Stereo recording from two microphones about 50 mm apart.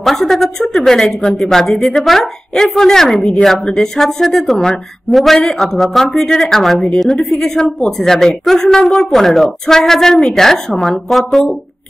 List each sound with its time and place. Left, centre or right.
0.0 s a woman's voice: centre
3.2 s a woman's voice: left
3.6 s a woman's voice: centre